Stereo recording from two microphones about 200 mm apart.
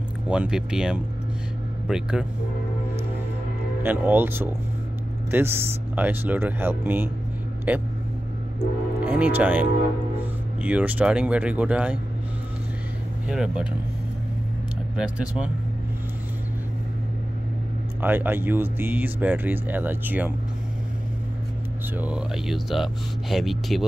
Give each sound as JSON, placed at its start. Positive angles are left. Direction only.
{"t": 0.3, "sound": "speech", "side_deg": -5}
{"t": 3.8, "sound": "speech", "side_deg": -10}
{"t": 13.3, "sound": "speech", "side_deg": -5}
{"t": 15.0, "sound": "speech", "side_deg": -5}
{"t": 18.0, "sound": "speech", "side_deg": -10}
{"t": 21.9, "sound": "speech", "side_deg": -5}